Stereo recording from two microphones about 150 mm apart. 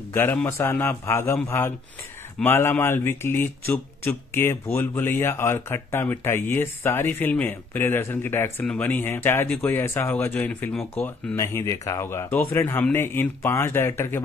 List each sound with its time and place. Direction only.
0.1 s speech: 15° left (ahead or behind)